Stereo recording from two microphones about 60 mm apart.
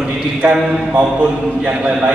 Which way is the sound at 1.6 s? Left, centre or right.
Centre.